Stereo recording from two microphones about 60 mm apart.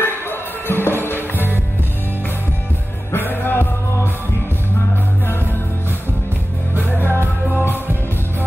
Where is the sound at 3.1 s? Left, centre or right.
Left.